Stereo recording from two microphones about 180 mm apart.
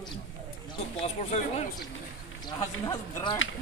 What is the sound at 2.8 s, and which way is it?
Speech, 25° left (ahead or behind).